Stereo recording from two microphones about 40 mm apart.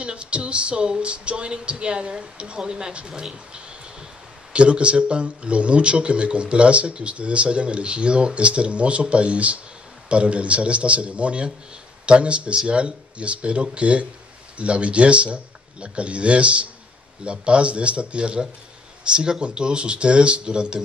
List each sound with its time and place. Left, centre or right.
0.0 s a man's voice: right